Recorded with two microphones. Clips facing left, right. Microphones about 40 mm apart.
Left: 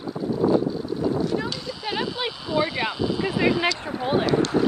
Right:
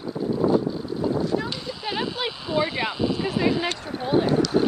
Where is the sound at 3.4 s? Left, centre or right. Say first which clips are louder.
Left 3 dB; left.